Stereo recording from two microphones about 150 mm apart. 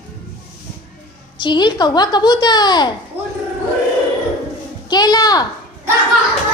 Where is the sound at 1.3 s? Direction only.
30° left (ahead or behind).